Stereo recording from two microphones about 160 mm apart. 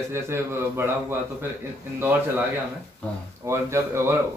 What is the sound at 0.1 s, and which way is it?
Speech, 15° right (ahead or behind).